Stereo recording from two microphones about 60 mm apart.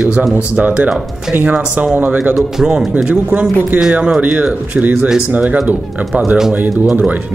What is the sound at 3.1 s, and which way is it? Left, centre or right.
Speech, right.